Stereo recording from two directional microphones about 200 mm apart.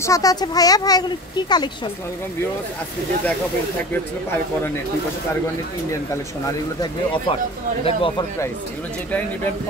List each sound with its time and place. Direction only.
0.0 s speech: 15° left (ahead or behind)
6.4 s speech: 20° left (ahead or behind)